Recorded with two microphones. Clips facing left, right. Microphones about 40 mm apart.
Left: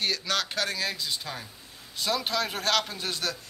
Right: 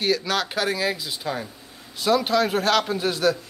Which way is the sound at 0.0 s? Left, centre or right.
Centre.